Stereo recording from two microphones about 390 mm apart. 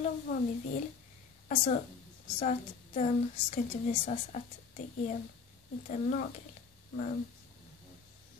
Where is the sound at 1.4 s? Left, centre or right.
Centre.